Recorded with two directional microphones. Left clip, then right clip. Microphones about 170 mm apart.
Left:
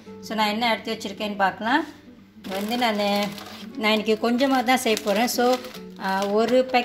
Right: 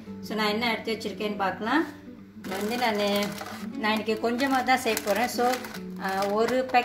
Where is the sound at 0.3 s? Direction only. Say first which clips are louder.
Left 4 dB; 60° left (ahead or behind).